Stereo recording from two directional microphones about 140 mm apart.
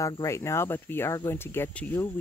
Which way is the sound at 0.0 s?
20° left (ahead or behind).